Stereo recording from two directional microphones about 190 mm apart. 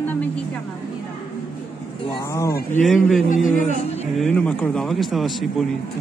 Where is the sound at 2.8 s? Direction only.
Centre (ahead or behind).